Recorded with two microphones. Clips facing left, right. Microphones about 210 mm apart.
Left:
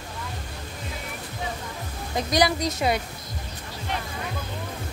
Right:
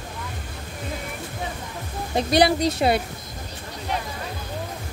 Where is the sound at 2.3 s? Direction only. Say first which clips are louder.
Right 4 dB; 30° right (ahead or behind).